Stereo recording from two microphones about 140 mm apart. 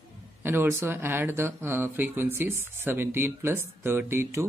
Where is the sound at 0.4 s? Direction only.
15° right (ahead or behind).